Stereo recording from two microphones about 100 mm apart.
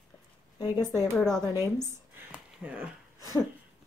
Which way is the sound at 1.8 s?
20° right (ahead or behind).